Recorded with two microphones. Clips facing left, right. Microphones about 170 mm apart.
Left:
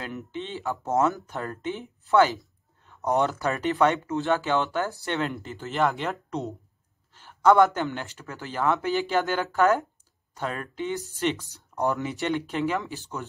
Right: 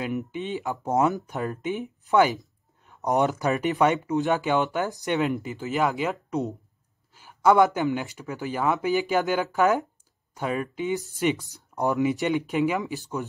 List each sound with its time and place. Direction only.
0.0 s speech: 15° right (ahead or behind)
5.6 s speech: centre (ahead or behind)